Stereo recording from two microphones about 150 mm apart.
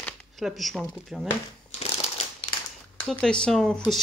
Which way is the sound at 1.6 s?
45° left (ahead or behind).